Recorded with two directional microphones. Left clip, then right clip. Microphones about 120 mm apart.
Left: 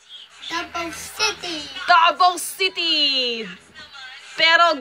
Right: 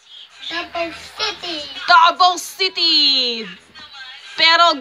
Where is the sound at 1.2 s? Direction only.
10° right (ahead or behind).